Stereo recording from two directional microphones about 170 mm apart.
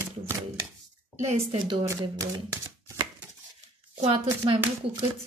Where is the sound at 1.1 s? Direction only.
40° right (ahead or behind).